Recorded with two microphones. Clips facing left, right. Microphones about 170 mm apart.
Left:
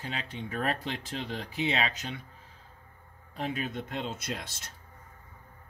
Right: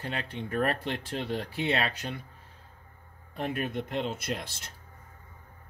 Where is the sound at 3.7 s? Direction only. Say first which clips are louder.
Right 4 dB; 15° right (ahead or behind).